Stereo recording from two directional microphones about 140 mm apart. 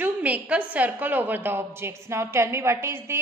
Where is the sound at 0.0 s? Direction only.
10° right (ahead or behind).